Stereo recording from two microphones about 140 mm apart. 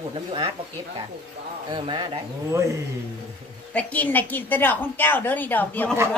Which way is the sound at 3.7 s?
10° left (ahead or behind).